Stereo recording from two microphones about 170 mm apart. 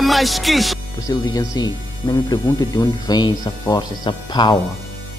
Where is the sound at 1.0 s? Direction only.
20° left (ahead or behind).